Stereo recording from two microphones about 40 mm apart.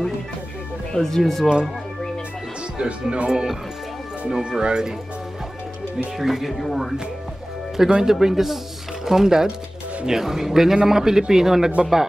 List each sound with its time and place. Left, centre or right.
0.9 s speech: centre
2.8 s speech: right
6.1 s speech: centre
7.9 s speech: centre